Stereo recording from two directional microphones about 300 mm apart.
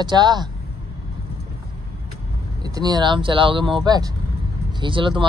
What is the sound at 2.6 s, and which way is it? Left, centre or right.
Speech, centre.